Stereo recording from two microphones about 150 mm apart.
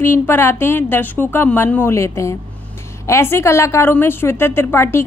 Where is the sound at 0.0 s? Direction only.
15° left (ahead or behind).